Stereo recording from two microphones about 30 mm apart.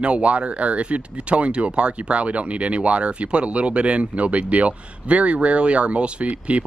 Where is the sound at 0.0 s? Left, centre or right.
Right.